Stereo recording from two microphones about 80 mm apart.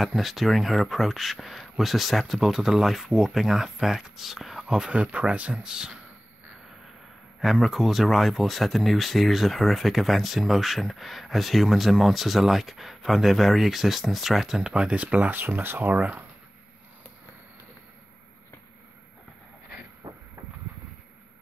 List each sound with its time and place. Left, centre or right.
0.0 s speech: centre
7.3 s speech: centre; by 16.3 s right
20.0 s vehicle: right